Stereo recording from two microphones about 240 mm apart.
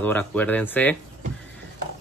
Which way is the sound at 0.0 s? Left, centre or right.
Centre.